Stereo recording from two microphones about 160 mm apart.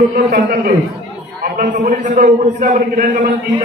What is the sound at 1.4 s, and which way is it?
A man's voice, 55° right (ahead or behind).